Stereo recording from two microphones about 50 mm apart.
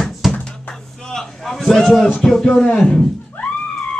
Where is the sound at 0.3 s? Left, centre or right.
Left.